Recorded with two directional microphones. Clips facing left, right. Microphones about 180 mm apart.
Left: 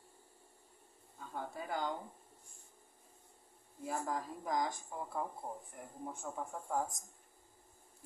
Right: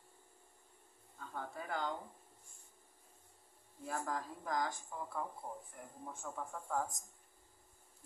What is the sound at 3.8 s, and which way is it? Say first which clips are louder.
Speech: left 2 dB; 15° left (ahead or behind).